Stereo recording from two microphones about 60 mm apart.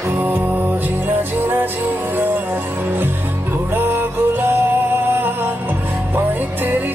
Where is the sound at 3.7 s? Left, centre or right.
Right.